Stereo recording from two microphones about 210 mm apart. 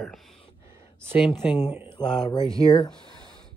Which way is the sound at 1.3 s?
20° left (ahead or behind).